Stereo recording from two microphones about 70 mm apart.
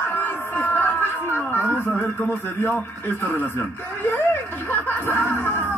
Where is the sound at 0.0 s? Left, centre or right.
Left.